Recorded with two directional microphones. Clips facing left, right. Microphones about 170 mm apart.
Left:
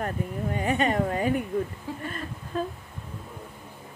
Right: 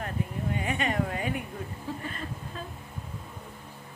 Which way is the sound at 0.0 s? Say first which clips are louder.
Left 3 dB; 35° left (ahead or behind).